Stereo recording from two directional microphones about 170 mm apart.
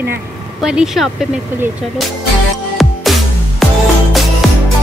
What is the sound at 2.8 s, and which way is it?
Music, centre (ahead or behind).